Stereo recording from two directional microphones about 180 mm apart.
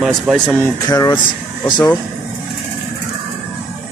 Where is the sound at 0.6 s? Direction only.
20° left (ahead or behind).